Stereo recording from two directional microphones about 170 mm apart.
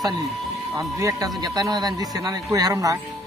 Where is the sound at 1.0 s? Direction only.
20° right (ahead or behind).